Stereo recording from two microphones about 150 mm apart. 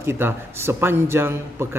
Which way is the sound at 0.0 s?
15° right (ahead or behind).